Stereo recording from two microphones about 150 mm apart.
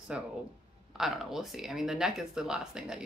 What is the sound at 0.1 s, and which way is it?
Speech, 5° right (ahead or behind).